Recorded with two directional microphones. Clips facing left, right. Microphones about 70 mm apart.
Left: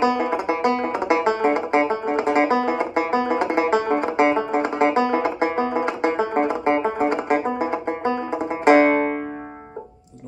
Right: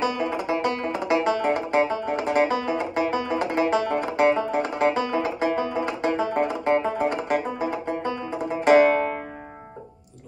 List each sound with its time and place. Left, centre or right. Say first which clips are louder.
0.0 s banjo: left 5 dB; left